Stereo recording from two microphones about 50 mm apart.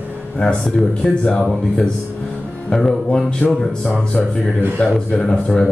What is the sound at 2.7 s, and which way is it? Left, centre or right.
Speech, centre.